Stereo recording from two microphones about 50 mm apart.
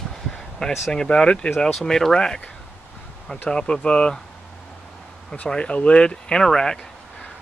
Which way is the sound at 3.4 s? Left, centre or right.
Centre.